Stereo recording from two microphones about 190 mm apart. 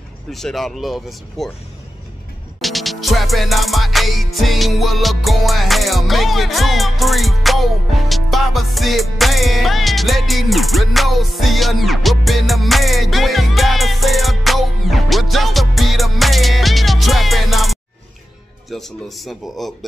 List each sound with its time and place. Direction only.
0.3 s speech: centre (ahead or behind)
2.6 s music: centre (ahead or behind)
18.7 s speech: centre (ahead or behind)